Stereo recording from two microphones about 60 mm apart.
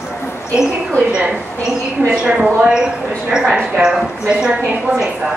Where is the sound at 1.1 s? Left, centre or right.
Centre.